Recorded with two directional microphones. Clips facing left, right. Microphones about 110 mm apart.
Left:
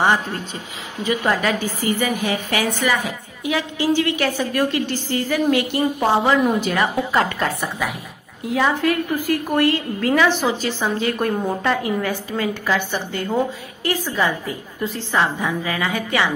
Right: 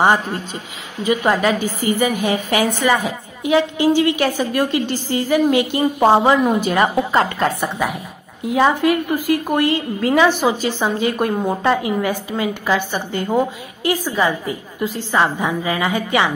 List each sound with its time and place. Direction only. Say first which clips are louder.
1.0 s a woman's voice: right 3 dB; 15° right (ahead or behind)
8.5 s a woman's voice: right 4 dB; 20° right (ahead or behind)